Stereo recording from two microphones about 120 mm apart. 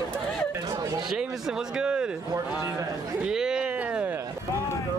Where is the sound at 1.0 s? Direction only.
5° right (ahead or behind).